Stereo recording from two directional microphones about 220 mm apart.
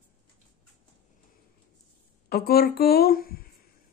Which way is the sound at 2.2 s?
45° left (ahead or behind).